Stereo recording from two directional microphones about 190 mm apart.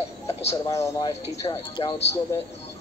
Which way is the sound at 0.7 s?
15° left (ahead or behind).